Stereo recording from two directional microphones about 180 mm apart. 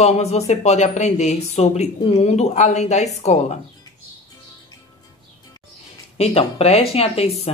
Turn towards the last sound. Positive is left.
turn(degrees=35)  # may be behind; listen again after turning